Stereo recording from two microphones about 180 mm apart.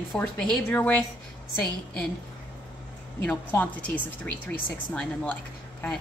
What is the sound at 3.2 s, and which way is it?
A woman's voice, 10° left (ahead or behind).